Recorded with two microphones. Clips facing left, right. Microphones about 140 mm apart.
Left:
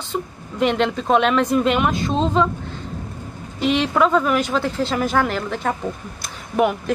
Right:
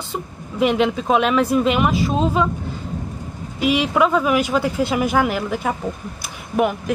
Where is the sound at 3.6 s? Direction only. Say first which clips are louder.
Even; 5° right (ahead or behind).